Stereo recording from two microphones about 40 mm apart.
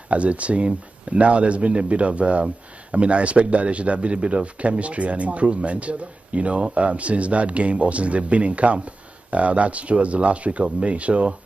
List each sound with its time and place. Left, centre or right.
0.1 s speech: right